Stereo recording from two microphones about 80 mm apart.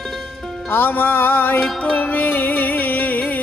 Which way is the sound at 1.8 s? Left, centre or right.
Centre.